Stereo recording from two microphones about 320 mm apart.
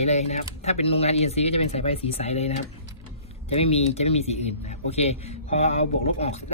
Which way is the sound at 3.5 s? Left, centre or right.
Centre.